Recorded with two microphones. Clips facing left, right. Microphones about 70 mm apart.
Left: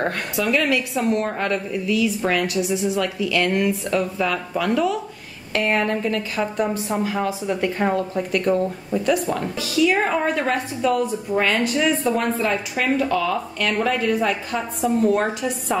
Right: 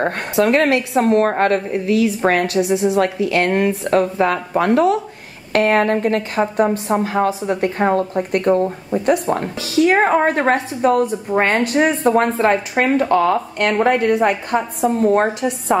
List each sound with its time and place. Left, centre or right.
0.4 s a woman's voice: right
5.5 s a woman's voice: right
15.0 s a woman's voice: right